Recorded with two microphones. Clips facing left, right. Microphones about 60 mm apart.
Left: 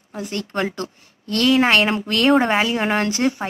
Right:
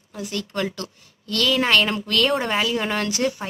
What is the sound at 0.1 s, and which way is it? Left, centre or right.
A woman's voice, left.